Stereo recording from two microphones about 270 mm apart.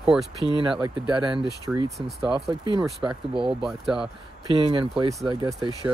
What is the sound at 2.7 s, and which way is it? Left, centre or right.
Speech, centre.